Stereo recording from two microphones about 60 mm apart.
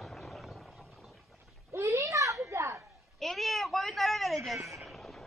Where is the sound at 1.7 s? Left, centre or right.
Right.